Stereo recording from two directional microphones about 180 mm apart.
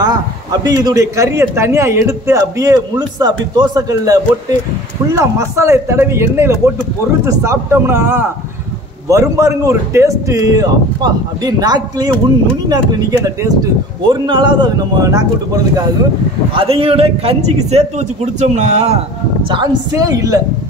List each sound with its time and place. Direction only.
0.0 s a man's voice: 20° right (ahead or behind)
16.5 s a man's voice: 30° right (ahead or behind)
19.5 s speech: 20° right (ahead or behind)